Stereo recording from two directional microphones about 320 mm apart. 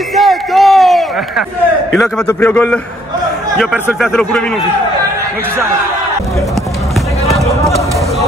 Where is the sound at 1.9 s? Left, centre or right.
Centre.